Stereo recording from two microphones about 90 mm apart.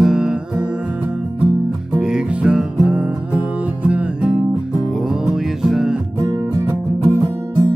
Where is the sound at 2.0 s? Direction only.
10° right (ahead or behind).